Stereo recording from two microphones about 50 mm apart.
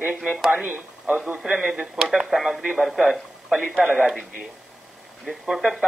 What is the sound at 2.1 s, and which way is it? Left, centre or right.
A man's voice, centre.